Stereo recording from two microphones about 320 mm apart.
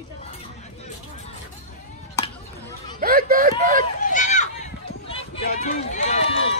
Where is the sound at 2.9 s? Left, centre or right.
Right.